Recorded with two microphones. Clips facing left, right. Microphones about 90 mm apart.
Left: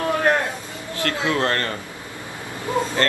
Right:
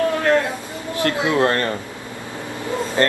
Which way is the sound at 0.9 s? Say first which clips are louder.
Right 4 dB; 20° right (ahead or behind).